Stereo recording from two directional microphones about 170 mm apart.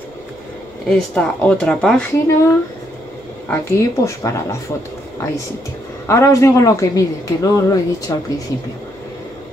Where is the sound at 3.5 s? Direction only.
15° left (ahead or behind).